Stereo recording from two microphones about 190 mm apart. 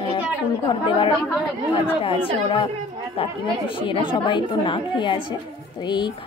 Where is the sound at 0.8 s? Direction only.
25° left (ahead or behind).